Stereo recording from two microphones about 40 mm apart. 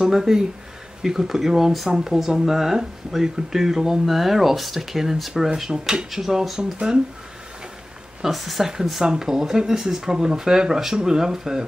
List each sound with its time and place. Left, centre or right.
0.0 s speech: centre
8.2 s speech: centre
9.0 s speech: centre